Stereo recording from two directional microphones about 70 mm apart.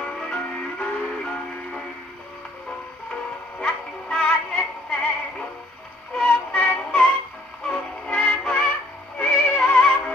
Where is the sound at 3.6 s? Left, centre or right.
Centre.